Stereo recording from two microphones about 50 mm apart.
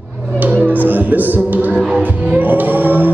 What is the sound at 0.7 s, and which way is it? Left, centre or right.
Music, right.